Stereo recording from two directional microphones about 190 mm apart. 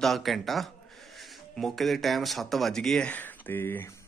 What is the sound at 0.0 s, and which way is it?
Speech, centre (ahead or behind).